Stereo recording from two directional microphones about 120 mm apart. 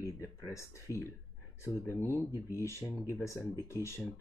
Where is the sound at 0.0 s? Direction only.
25° left (ahead or behind).